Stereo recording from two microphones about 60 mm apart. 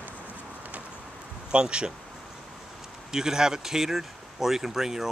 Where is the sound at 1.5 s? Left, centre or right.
Centre.